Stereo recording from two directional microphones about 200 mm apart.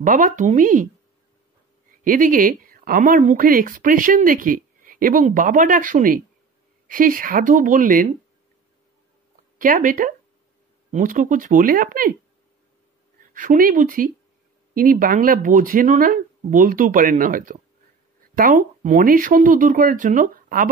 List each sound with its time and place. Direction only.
0.0 s speech: 40° right (ahead or behind)
2.0 s speech: 40° right (ahead or behind)
9.6 s speech: 45° right (ahead or behind)
13.3 s speech: 40° right (ahead or behind)